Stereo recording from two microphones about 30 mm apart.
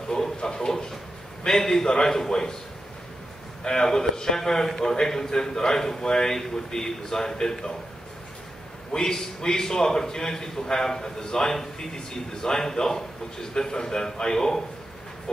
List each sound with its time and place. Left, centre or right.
0.1 s a sound: left
1.4 s a man's voice: centre
3.6 s a man's voice: left
4.6 s a man's voice: centre
8.9 s a man's voice: left